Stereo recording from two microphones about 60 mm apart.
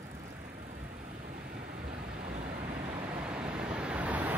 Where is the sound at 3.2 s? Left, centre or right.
Centre.